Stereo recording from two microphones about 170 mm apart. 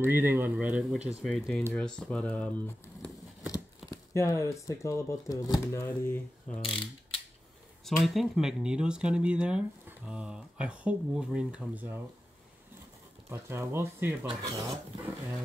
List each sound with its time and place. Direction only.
0.0 s speech: 10° right (ahead or behind)
1.2 s speech: 5° left (ahead or behind)
7.8 s speech: centre (ahead or behind)
13.3 s speech: 15° right (ahead or behind)
14.2 s speech: 25° right (ahead or behind)